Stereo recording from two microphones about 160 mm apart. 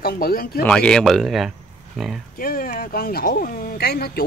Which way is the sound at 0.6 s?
5° left (ahead or behind).